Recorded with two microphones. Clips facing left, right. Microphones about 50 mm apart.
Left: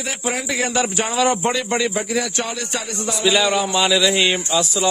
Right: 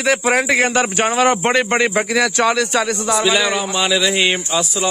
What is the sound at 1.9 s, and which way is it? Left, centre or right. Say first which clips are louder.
Speech: right 5 dB; right.